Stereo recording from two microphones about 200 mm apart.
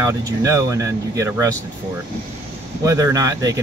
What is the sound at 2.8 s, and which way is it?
Speech, 15° right (ahead or behind).